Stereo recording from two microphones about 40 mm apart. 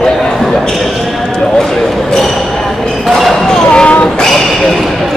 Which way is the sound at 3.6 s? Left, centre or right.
Left.